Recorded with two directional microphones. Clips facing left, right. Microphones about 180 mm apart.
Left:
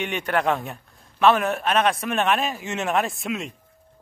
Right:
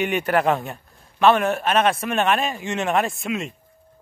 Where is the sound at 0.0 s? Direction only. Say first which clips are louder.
Right 4 dB; 5° right (ahead or behind).